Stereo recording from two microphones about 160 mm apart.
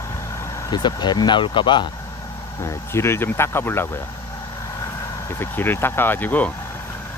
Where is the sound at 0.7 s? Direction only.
25° left (ahead or behind).